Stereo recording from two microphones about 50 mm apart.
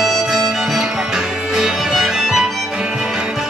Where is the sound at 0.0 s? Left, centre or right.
Centre.